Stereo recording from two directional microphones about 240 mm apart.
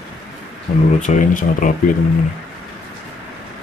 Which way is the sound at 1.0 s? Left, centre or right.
Left.